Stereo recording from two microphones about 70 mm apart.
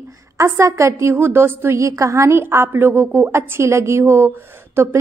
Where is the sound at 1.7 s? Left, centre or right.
Right.